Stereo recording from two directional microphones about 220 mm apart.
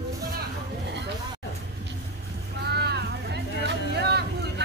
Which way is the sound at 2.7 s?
50° right (ahead or behind).